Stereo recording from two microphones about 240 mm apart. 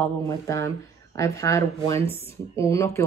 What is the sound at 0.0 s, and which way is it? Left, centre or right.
Speech, centre.